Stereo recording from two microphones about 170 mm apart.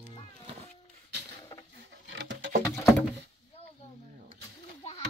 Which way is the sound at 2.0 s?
90° right.